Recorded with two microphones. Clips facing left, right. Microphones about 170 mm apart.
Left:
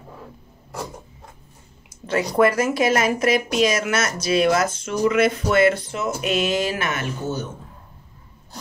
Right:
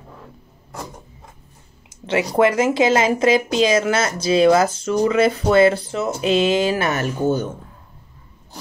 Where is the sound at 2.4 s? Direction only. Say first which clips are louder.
Right 2 dB; 25° right (ahead or behind); by 7.5 s 45° right (ahead or behind).